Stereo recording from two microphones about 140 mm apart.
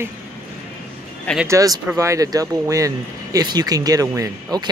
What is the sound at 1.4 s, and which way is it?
Speech, 20° right (ahead or behind).